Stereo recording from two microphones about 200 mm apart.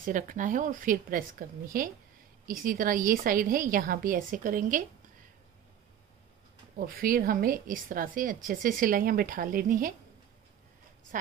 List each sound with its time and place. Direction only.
0.0 s a woman's voice: 40° right (ahead or behind)
6.8 s a woman's voice: 45° right (ahead or behind)